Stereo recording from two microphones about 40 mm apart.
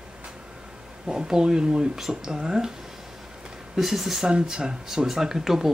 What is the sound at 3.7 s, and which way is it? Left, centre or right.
Speech, centre.